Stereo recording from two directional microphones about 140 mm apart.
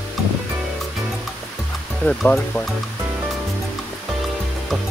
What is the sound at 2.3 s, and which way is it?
Speech, 15° left (ahead or behind).